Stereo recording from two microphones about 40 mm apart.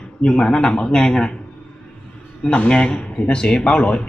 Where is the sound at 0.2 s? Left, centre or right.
Left.